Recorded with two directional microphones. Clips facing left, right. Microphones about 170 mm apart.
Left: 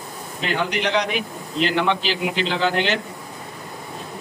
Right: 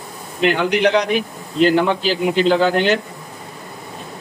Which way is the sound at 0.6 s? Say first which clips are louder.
Right 6 dB; 50° right (ahead or behind).